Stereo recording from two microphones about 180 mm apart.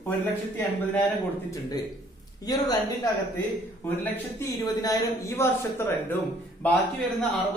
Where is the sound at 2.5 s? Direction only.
20° left (ahead or behind).